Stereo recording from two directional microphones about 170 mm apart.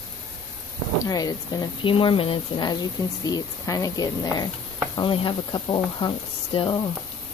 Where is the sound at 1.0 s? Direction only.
25° left (ahead or behind).